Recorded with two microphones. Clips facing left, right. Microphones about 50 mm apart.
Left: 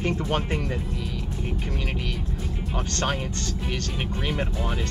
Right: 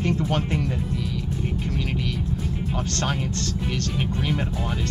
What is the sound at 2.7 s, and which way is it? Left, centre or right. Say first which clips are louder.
Speech: left 1 dB; centre.